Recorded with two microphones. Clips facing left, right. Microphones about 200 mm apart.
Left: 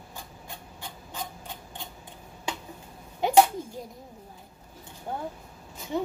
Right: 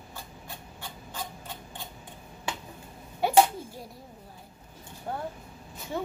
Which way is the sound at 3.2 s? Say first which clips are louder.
Left 1 dB; 20° left (ahead or behind).